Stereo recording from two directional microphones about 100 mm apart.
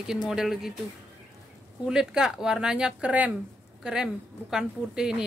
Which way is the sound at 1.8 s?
5° right (ahead or behind).